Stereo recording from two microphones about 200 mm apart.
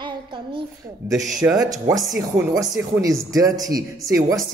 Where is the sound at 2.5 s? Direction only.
15° right (ahead or behind).